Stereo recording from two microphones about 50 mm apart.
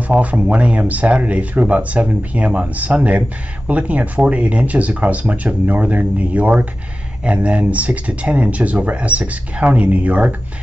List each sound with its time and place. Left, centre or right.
0.1 s speech: right